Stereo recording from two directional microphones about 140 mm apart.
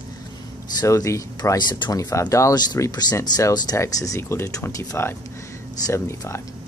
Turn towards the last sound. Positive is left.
turn(degrees=25)  # may be behind; listen again after turning